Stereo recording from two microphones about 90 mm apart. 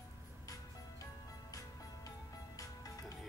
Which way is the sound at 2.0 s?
40° left (ahead or behind).